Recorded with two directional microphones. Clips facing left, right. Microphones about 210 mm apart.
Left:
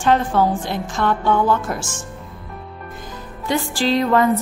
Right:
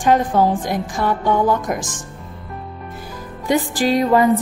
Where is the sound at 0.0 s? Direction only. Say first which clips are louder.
Right 1 dB; 15° right (ahead or behind).